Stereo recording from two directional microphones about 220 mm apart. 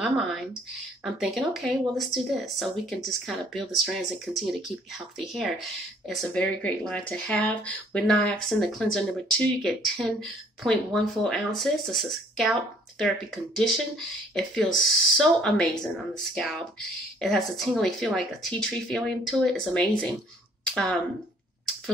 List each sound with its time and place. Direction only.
1.0 s speech: centre (ahead or behind)
13.6 s speech: centre (ahead or behind)